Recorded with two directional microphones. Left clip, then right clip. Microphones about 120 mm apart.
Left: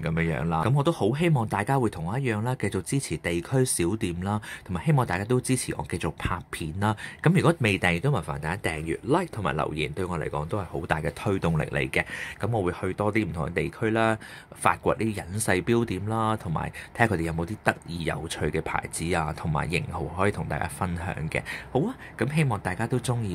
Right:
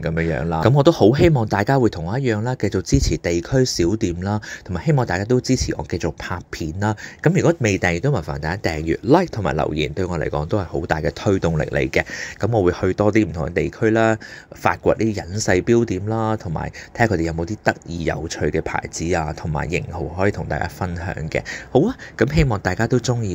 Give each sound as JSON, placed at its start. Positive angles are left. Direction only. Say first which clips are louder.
{"t": 0.0, "sound": "speech", "louder": "right 7 dB", "side_deg": -20}
{"t": 0.6, "sound": "speech", "louder": "right 12 dB", "side_deg": -60}
{"t": 2.9, "sound": "speech", "louder": "right 9 dB", "side_deg": -35}
{"t": 9.4, "sound": "speech", "louder": "right 7 dB", "side_deg": -30}
{"t": 10.7, "sound": "speech", "louder": "right 7 dB", "side_deg": -25}
{"t": 21.7, "sound": "speech", "louder": "right 11 dB", "side_deg": -40}